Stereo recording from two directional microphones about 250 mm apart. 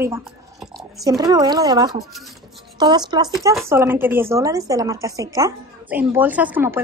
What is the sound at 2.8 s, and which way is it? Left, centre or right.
A woman's voice, centre.